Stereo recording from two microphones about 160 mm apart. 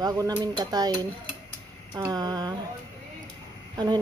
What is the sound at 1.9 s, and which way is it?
Speech, 25° right (ahead or behind).